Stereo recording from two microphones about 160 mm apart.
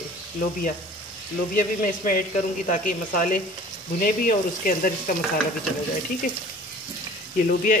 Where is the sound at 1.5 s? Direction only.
60° left (ahead or behind).